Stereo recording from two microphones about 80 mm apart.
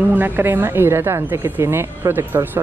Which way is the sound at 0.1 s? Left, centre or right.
Right.